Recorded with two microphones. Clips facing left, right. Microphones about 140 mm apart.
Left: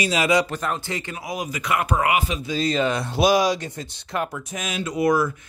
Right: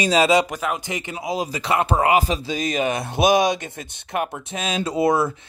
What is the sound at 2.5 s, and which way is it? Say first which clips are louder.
Speech: left 2 dB; 15° right (ahead or behind).